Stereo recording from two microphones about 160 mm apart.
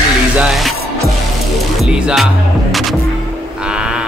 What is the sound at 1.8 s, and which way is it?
Music, 5° right (ahead or behind).